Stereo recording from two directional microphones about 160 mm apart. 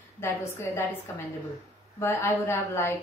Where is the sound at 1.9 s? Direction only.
15° left (ahead or behind).